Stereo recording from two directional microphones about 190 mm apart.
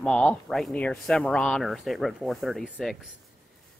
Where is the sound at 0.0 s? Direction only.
5° left (ahead or behind).